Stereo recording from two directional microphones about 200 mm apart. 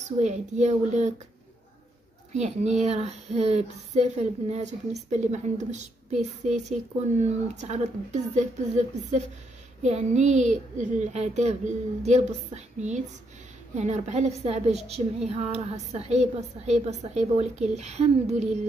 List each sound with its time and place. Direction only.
0.2 s speech: 35° right (ahead or behind)
2.3 s speech: 35° right (ahead or behind)